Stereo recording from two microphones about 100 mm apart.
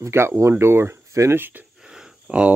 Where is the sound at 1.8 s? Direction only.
5° right (ahead or behind).